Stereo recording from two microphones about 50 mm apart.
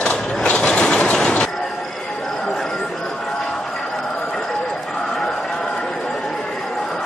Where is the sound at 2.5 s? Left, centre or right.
Centre.